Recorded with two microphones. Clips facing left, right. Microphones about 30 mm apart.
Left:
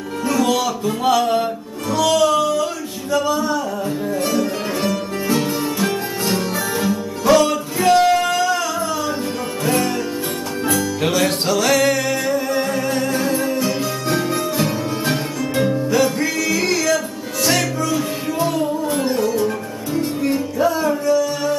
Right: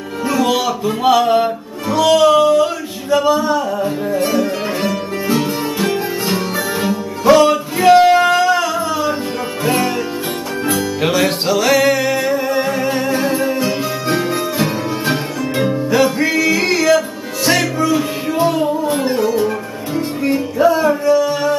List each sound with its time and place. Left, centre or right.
0.2 s music: centre